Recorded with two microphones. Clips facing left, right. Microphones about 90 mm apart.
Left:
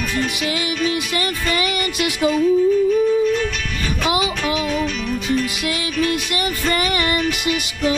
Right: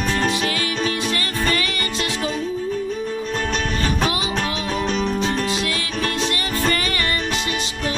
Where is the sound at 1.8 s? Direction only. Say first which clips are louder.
Left 5 dB; 30° right (ahead or behind).